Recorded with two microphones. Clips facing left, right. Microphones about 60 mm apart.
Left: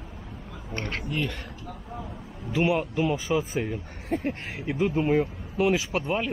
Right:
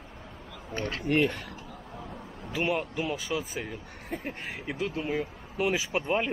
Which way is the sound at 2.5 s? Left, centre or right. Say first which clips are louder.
Left 5 dB; centre.